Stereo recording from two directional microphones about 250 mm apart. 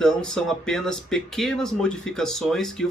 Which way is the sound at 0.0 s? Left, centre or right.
Centre.